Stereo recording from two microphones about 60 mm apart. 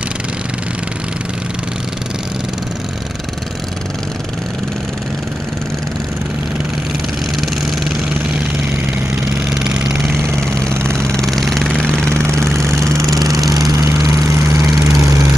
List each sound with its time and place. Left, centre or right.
7.3 s vehicle: centre
9.5 s vehicle: centre
10.5 s vehicle: centre
11.1 s vehicle: centre
11.7 s vehicle: centre
12.1 s vehicle: right
12.6 s vehicle: centre
13.0 s vehicle: right
13.4 s lawn mower: centre
13.7 s vehicle: right
14.8 s lawn mower: right